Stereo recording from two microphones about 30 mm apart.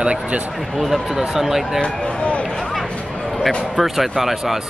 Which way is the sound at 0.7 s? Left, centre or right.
Centre.